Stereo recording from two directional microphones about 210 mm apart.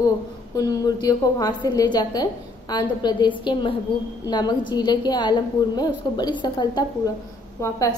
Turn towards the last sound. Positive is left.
turn(degrees=15)  # may be behind; listen again after turning